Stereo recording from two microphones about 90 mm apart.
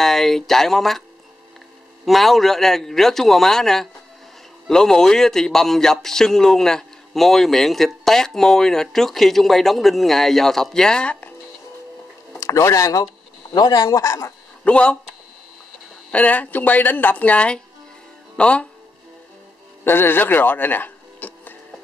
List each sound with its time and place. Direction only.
0.0 s a man's voice: 5° left (ahead or behind)
2.0 s a man's voice: centre (ahead or behind)
12.4 s a man's voice: 35° left (ahead or behind)
14.6 s speech: 10° left (ahead or behind)
16.1 s a woman's voice: 15° left (ahead or behind)
19.8 s speech: 25° left (ahead or behind)